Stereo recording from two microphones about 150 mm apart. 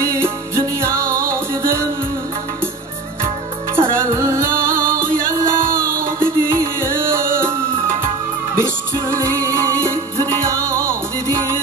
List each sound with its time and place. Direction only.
0.0 s music: 15° right (ahead or behind)
3.7 s music: 15° right (ahead or behind)
4.6 s music: 70° right (ahead or behind)
6.1 s music: 15° right (ahead or behind)
8.5 s music: 15° right (ahead or behind)